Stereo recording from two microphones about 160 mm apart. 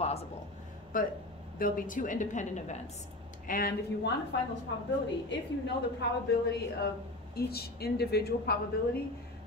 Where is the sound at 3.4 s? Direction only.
65° left (ahead or behind).